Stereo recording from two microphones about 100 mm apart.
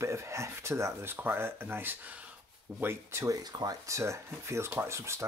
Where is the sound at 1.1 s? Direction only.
20° right (ahead or behind).